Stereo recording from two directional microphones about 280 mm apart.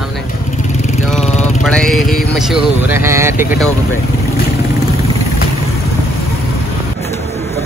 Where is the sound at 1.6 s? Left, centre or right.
Centre.